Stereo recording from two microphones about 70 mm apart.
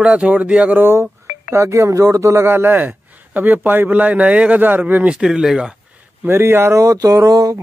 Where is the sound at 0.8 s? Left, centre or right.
Right.